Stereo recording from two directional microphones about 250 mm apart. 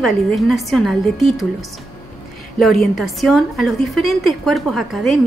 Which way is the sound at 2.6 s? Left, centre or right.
Centre.